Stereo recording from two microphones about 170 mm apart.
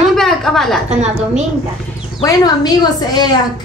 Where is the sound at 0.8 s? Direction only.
40° right (ahead or behind).